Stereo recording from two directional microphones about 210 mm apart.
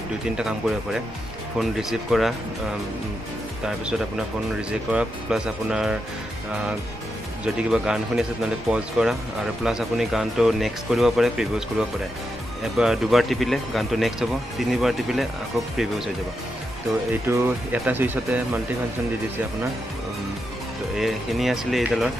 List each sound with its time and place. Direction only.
0.4 s speech: 5° right (ahead or behind)
4.6 s speech: 5° right (ahead or behind)
7.4 s speech: 5° right (ahead or behind)
12.7 s speech: centre (ahead or behind)
17.1 s speech: 10° right (ahead or behind)
20.9 s speech: centre (ahead or behind)